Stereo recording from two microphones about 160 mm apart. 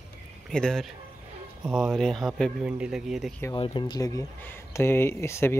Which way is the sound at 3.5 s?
30° left (ahead or behind).